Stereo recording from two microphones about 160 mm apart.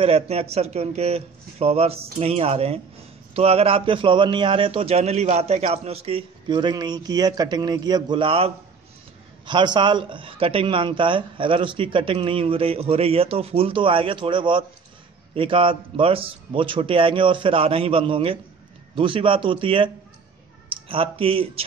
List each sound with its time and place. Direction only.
0.0 s a man's voice: 40° right (ahead or behind)